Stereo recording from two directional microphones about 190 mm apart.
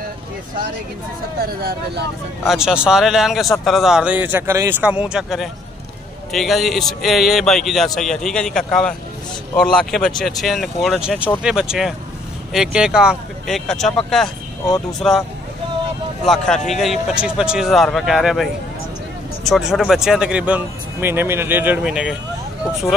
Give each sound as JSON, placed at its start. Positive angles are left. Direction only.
{"t": 1.4, "sound": "speech", "side_deg": -55}
{"t": 2.4, "sound": "speech", "side_deg": 0}
{"t": 16.3, "sound": "speech", "side_deg": 0}